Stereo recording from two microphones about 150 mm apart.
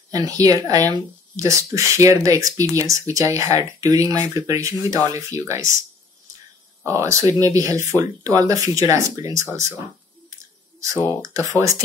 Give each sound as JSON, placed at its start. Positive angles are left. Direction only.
{"t": 0.1, "sound": "speech", "side_deg": -25}
{"t": 6.8, "sound": "speech", "side_deg": -20}
{"t": 11.2, "sound": "speech", "side_deg": -20}